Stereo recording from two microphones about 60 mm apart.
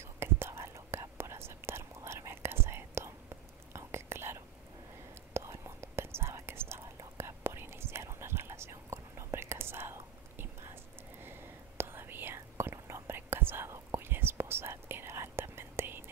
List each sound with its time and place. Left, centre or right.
0.0 s whispering: right